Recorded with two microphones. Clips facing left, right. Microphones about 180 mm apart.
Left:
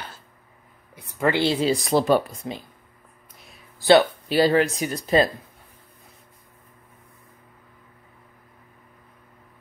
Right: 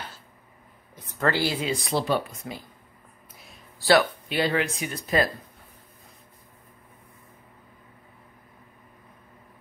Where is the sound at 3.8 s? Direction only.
20° left (ahead or behind).